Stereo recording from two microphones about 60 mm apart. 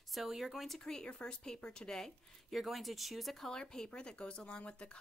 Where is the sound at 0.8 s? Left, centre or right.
Centre.